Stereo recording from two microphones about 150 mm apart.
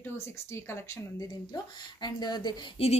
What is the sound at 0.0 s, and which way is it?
Speech, 15° left (ahead or behind).